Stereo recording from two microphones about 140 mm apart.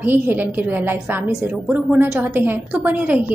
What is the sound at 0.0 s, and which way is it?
A woman's voice, 15° right (ahead or behind).